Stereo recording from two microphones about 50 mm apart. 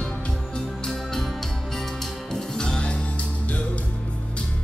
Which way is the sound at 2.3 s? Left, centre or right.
Centre.